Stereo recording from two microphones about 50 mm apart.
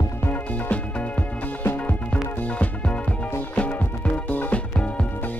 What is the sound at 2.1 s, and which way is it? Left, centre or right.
Music, left.